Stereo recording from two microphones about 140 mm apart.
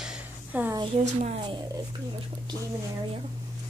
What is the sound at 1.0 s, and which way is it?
Speech, 55° right (ahead or behind).